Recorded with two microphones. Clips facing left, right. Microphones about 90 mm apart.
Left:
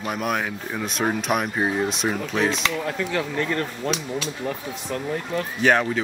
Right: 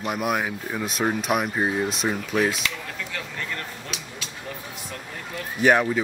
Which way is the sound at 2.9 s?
45° left (ahead or behind).